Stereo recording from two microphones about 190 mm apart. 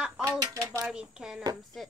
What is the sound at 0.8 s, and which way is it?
Speech, 5° right (ahead or behind).